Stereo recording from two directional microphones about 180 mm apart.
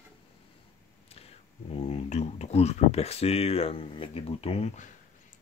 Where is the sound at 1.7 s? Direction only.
35° left (ahead or behind).